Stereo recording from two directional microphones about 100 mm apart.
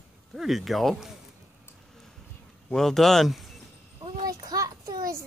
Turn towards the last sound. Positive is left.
turn(degrees=-35)  # may be behind; listen again after turning